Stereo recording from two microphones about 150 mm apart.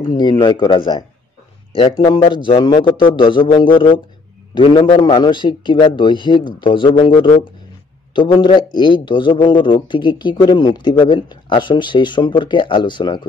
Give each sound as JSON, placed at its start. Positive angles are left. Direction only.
{"t": 0.2, "sound": "a man's voice", "side_deg": 30}